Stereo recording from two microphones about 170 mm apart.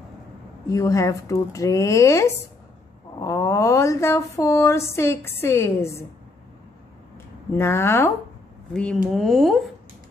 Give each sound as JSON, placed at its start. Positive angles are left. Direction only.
{"t": 0.7, "sound": "speech", "side_deg": 20}
{"t": 7.5, "sound": "speech", "side_deg": 15}
{"t": 9.1, "sound": "speech", "side_deg": 0}